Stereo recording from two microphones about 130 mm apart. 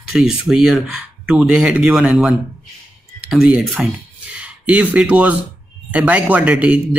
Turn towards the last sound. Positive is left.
turn(degrees=-10)  # may be behind; listen again after turning